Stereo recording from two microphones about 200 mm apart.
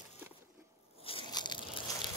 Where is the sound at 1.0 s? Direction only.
25° left (ahead or behind).